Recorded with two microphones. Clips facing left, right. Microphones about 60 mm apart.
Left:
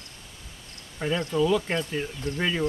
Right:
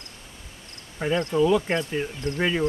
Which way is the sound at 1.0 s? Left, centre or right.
Centre.